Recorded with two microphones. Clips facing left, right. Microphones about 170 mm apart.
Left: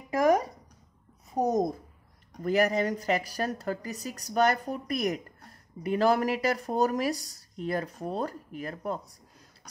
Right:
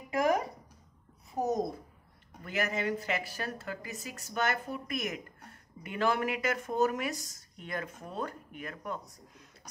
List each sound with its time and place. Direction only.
1.3 s a child's voice: 45° left (ahead or behind)